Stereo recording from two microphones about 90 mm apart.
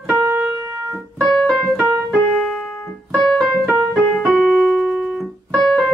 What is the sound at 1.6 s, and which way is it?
Keyboard, 20° right (ahead or behind).